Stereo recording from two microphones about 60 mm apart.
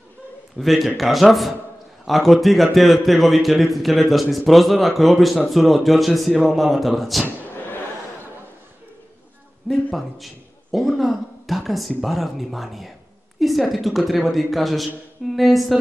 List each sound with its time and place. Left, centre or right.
0.6 s a man's voice: centre
7.2 s a sound: left
9.9 s a man's voice: centre